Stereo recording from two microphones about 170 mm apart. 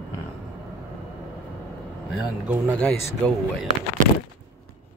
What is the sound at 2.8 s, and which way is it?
Speech, 5° left (ahead or behind).